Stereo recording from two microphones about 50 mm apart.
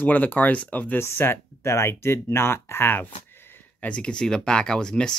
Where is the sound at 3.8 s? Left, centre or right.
Left.